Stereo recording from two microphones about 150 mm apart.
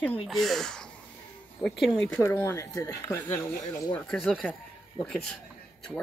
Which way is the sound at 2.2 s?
15° left (ahead or behind).